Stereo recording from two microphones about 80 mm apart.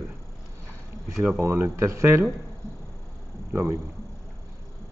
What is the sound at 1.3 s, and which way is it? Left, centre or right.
Speech, right.